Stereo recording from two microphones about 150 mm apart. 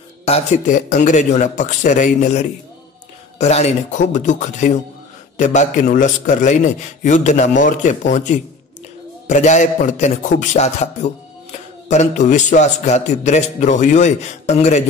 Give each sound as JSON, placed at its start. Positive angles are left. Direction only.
{"t": 0.2, "sound": "speech", "side_deg": 45}
{"t": 0.7, "sound": "a man's voice", "side_deg": 60}